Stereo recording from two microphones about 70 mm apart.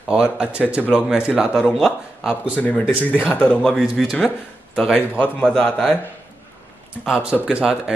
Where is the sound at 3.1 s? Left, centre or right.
Left.